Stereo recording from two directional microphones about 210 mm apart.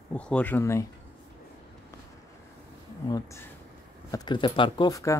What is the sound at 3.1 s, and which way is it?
Speech, 15° left (ahead or behind).